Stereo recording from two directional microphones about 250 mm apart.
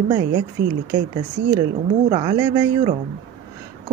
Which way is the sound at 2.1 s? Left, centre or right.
Centre.